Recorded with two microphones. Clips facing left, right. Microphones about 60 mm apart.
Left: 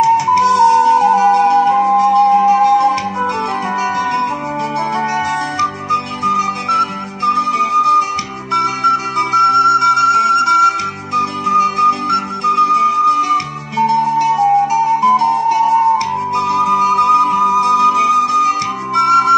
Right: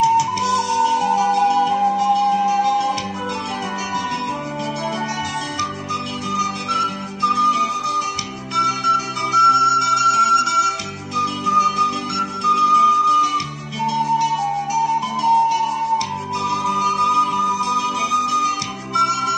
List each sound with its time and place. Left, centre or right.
0.0 s music: left
5.6 s music: left